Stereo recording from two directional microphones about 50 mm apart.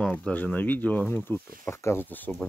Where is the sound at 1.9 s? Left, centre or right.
Left.